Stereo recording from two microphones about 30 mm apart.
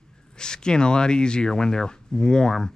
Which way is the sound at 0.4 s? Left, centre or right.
Left.